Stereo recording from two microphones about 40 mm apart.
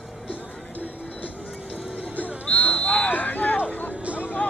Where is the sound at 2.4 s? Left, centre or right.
Left.